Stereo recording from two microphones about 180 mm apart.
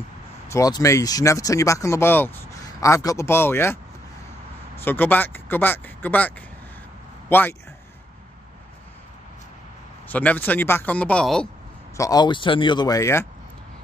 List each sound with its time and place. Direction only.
0.5 s a man's voice: 20° left (ahead or behind)
10.0 s speech: 10° left (ahead or behind)
12.0 s speech: 20° left (ahead or behind)